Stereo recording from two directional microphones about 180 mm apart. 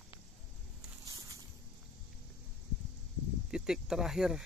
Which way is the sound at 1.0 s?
20° right (ahead or behind).